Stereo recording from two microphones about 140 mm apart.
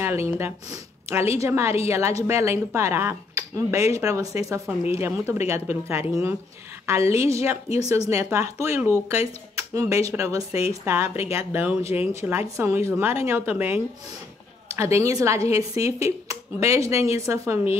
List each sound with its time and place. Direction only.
0.0 s a woman's voice: 15° right (ahead or behind)